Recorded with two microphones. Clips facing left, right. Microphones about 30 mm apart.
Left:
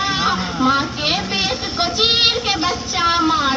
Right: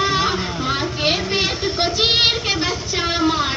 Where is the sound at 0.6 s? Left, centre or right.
Centre.